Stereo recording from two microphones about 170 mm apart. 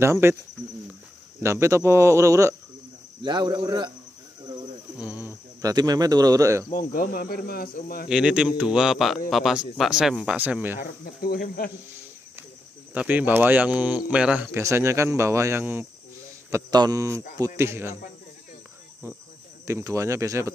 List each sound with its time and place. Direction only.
0.0 s speech: 15° right (ahead or behind)
1.4 s speech: 15° right (ahead or behind)
4.9 s cricket: 10° right (ahead or behind)
5.6 s speech: 20° right (ahead or behind)
6.7 s cricket: 60° left (ahead or behind)
8.1 s speech: 5° right (ahead or behind)
10.8 s cricket: 60° left (ahead or behind)
12.9 s speech: 10° right (ahead or behind)
19.6 s speech: 20° right (ahead or behind)